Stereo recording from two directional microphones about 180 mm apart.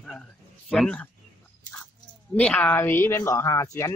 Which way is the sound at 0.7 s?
5° left (ahead or behind).